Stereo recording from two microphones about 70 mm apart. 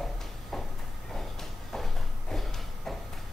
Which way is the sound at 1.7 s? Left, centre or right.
Centre.